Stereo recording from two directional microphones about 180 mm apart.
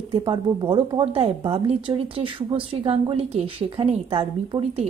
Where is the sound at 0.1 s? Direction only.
30° right (ahead or behind).